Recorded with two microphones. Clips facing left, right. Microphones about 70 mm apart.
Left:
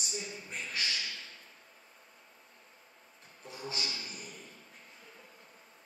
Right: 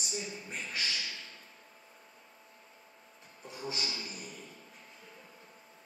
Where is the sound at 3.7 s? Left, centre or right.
Centre.